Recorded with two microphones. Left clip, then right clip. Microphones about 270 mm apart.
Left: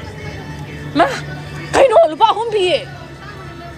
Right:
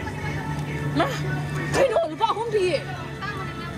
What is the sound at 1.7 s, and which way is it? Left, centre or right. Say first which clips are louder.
Music: left 11 dB; centre.